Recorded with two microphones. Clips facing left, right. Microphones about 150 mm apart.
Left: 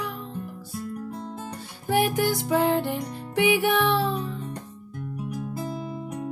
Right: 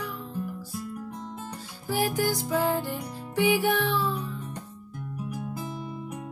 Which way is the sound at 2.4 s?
70° left (ahead or behind).